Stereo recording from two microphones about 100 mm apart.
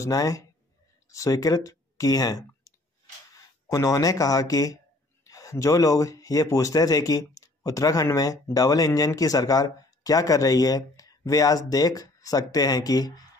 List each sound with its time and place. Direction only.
0.0 s speech: 35° left (ahead or behind)